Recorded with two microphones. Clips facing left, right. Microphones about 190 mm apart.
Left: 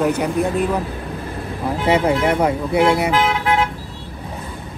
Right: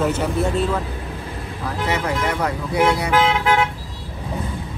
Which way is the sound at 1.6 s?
25° left (ahead or behind).